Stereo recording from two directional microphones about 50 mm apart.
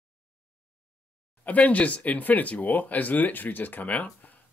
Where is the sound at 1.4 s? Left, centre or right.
Left.